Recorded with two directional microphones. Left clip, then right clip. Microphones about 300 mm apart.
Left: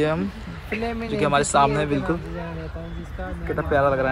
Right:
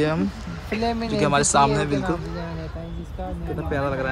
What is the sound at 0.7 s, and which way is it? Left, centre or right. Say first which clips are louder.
Speech: right 3 dB; right.